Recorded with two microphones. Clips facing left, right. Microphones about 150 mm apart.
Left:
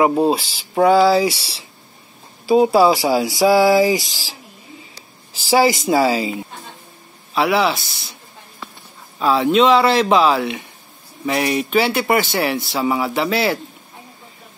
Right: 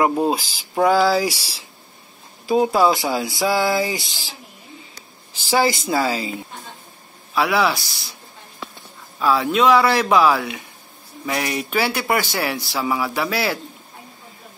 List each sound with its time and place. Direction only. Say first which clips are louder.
0.0 s speech: left 3 dB; 5° left (ahead or behind)
2.4 s speech: left 4 dB; 5° left (ahead or behind)
3.4 s a sound: left 7 dB; 10° left (ahead or behind)
3.9 s speech: left 8 dB; 40° left (ahead or behind)
5.5 s a sound: left 4 dB; 10° left (ahead or behind)
7.3 s speech: left 2 dB; 20° left (ahead or behind)
9.2 s speech: left 3 dB; 20° left (ahead or behind)